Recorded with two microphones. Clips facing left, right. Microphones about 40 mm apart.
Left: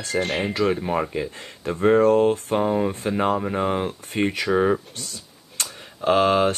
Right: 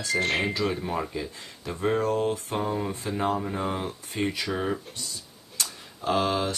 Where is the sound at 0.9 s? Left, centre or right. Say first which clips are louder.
Left 6 dB; left.